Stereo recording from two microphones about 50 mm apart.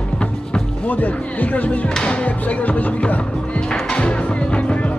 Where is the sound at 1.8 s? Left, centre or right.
Centre.